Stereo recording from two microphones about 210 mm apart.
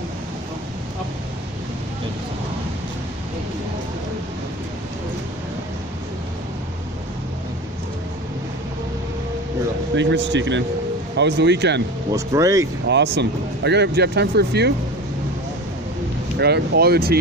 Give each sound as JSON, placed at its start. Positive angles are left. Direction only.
{"t": 9.9, "sound": "speech", "side_deg": -60}
{"t": 12.1, "sound": "speech", "side_deg": -15}
{"t": 12.8, "sound": "speech", "side_deg": -55}
{"t": 16.3, "sound": "speech", "side_deg": -50}